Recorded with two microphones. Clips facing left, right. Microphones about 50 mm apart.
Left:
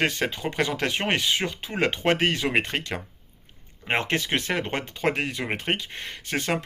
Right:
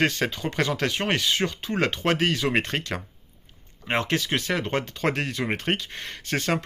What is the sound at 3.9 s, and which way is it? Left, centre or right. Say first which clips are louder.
Speech: even; left.